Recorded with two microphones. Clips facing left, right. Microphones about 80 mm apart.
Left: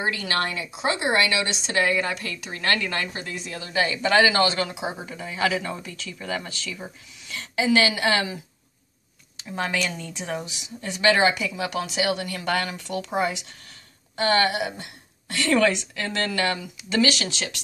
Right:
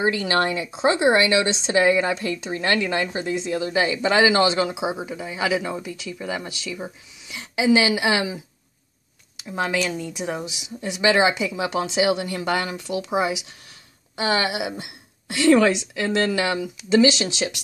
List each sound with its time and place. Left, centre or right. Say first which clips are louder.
0.0 s speech: right 5 dB; right
9.4 s speech: right 3 dB; centre